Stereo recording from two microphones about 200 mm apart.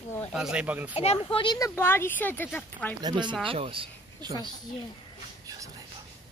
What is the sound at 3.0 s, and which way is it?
Speech, 20° right (ahead or behind).